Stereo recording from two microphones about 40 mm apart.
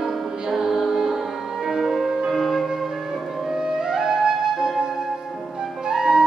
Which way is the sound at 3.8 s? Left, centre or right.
Centre.